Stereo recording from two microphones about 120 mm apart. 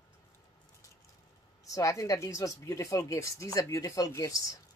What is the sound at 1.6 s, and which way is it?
A woman's voice, 30° left (ahead or behind).